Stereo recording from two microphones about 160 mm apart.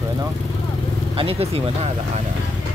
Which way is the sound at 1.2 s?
35° right (ahead or behind).